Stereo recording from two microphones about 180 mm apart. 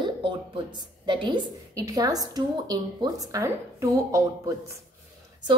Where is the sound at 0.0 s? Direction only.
25° right (ahead or behind).